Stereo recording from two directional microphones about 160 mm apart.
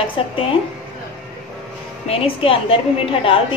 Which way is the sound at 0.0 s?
35° left (ahead or behind).